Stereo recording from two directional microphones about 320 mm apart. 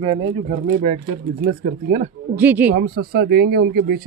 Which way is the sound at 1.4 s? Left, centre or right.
Right.